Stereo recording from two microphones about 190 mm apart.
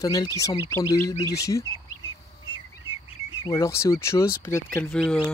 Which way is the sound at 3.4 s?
15° left (ahead or behind).